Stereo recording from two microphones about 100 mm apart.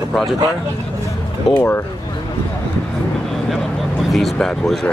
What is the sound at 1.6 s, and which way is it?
Speech, 20° left (ahead or behind).